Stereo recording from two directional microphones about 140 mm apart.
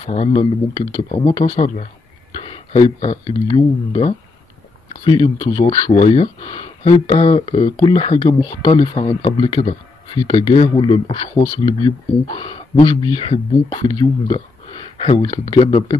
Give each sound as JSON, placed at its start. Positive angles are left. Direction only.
{"t": 0.0, "sound": "speech", "side_deg": 50}